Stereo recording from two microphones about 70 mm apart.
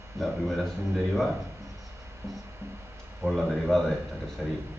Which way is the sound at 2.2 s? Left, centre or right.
Right.